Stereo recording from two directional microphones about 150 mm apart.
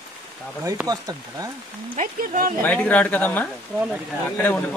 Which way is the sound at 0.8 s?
25° right (ahead or behind).